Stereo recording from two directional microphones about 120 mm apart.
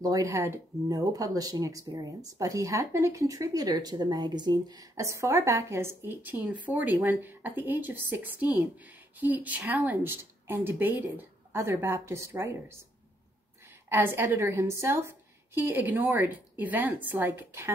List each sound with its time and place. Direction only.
0.0 s speech: 30° right (ahead or behind)
13.8 s speech: 20° right (ahead or behind)